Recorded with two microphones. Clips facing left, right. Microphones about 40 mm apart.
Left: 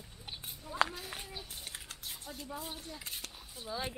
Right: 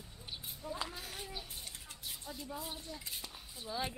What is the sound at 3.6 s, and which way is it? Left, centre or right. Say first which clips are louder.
Speech: even; centre.